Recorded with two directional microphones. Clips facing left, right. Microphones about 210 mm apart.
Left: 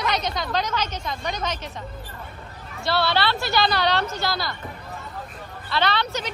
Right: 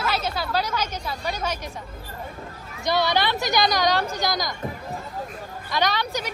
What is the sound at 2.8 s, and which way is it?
A woman's voice, 15° right (ahead or behind).